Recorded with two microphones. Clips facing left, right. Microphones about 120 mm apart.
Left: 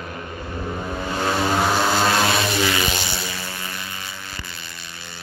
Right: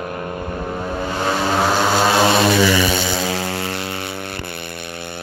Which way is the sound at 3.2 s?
85° right.